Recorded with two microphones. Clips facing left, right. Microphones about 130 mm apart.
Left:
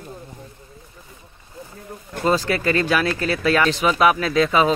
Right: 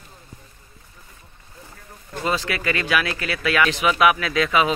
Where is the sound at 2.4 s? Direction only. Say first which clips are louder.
Left 5 dB; 35° left (ahead or behind).